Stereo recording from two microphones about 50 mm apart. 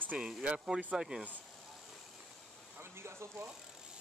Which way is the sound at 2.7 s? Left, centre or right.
Right.